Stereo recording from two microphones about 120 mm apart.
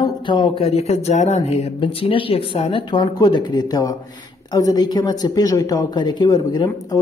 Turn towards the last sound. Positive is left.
turn(degrees=35)  # may be behind; listen again after turning